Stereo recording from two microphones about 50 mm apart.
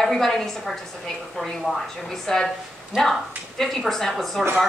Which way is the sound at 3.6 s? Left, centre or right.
Centre.